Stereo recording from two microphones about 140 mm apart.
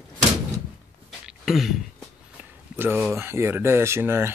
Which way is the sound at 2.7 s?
15° right (ahead or behind).